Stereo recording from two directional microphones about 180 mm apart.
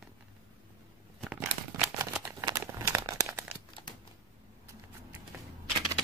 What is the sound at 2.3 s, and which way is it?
Crumpling, 15° right (ahead or behind).